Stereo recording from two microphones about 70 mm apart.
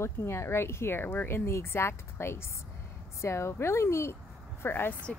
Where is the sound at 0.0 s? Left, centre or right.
Left.